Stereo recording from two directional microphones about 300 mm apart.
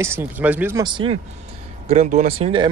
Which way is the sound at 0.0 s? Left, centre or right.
Centre.